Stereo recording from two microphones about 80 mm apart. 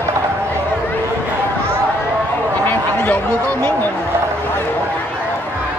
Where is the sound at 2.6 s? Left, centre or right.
Left.